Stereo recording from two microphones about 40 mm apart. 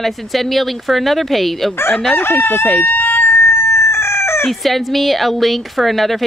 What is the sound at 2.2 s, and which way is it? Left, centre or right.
Chicken, left.